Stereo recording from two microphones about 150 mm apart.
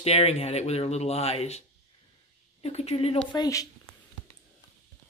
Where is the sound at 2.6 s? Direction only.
45° left (ahead or behind).